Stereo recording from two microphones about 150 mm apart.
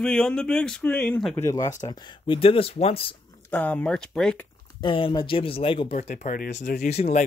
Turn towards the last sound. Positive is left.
turn(degrees=60)  # may be behind; listen again after turning